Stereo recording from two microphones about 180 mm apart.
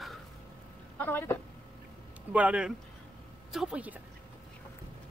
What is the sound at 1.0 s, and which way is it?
Speech, 10° left (ahead or behind).